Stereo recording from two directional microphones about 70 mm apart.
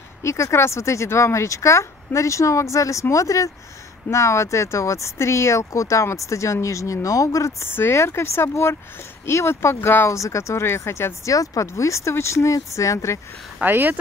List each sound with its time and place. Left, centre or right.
0.2 s speech: left
10.0 s speech: left
11.2 s speech: left
13.6 s speech: right